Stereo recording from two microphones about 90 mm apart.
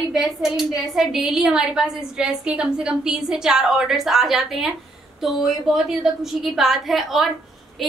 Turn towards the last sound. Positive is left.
turn(degrees=0)  # may be behind; listen again after turning